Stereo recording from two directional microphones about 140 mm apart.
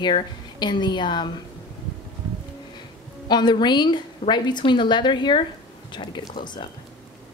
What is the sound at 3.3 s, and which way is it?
A woman's voice, 30° left (ahead or behind).